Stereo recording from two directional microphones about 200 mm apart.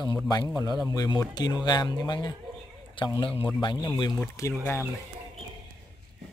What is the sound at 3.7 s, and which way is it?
Speech, 10° left (ahead or behind).